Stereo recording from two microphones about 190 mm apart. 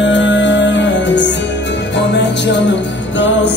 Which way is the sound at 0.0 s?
75° left (ahead or behind).